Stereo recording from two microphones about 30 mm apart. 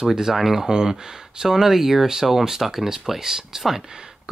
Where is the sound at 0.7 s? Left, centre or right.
Right.